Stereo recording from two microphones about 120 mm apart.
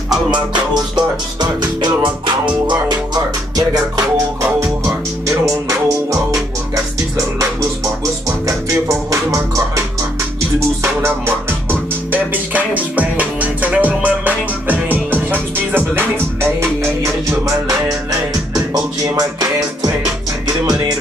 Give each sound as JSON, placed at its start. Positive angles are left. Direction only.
{"t": 0.9, "sound": "music", "side_deg": -35}
{"t": 8.5, "sound": "music", "side_deg": -30}
{"t": 10.8, "sound": "music", "side_deg": -20}
{"t": 19.1, "sound": "music", "side_deg": -30}